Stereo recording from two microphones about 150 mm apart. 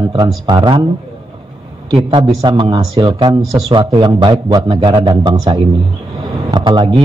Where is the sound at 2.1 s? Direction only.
30° right (ahead or behind).